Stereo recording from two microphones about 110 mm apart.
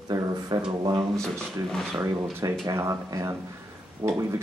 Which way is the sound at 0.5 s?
45° right (ahead or behind).